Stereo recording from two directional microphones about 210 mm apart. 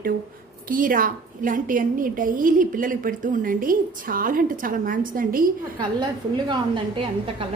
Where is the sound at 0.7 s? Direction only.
40° right (ahead or behind).